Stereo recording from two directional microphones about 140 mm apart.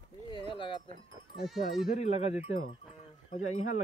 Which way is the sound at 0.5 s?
35° left (ahead or behind).